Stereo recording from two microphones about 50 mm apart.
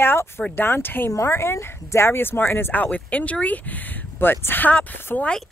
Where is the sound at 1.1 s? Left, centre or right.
Left.